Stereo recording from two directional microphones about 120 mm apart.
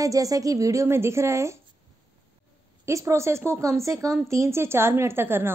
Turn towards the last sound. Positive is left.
turn(degrees=-20)  # may be behind; listen again after turning